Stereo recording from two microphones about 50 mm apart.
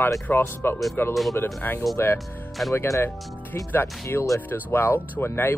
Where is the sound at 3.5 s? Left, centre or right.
Left.